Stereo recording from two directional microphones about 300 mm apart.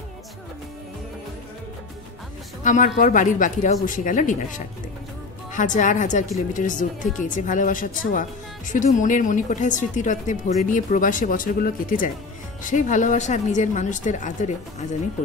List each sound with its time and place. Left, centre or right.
2.6 s speech: left